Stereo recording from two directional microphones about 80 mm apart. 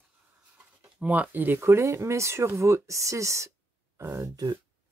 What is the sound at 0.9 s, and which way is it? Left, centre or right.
Speech, centre.